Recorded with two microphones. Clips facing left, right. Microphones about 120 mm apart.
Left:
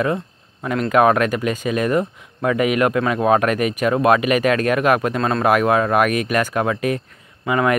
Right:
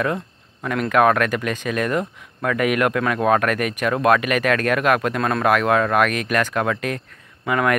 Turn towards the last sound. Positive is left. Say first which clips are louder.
# left 2 dB
turn(degrees=5)  # may be behind; listen again after turning